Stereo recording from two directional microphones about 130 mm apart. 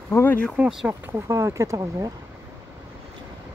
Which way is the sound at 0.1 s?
15° left (ahead or behind).